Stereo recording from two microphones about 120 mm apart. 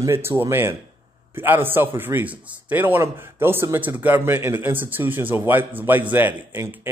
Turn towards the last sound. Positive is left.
turn(degrees=-20)  # may be behind; listen again after turning